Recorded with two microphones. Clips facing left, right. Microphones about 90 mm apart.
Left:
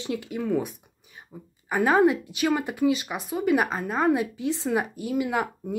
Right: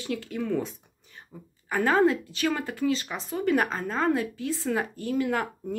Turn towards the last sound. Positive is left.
turn(degrees=10)  # may be behind; listen again after turning